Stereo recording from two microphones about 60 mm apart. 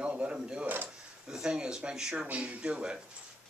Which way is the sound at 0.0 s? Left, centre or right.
Centre.